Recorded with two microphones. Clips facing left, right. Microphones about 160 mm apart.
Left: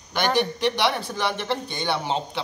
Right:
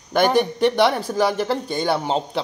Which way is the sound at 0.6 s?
50° right (ahead or behind).